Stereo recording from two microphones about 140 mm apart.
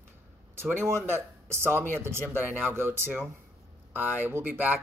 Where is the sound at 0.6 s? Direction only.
15° right (ahead or behind).